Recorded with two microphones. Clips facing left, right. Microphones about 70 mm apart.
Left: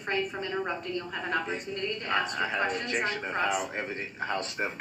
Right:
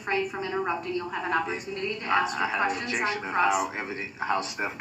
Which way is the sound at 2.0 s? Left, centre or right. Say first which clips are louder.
Right 5 dB; centre.